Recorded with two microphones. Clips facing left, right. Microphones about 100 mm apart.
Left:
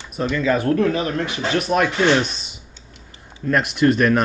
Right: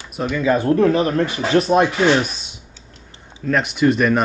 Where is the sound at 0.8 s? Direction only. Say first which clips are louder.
Right 4 dB; 35° right (ahead or behind).